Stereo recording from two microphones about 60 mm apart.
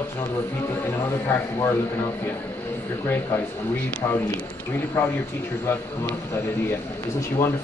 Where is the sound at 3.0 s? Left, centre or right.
Left.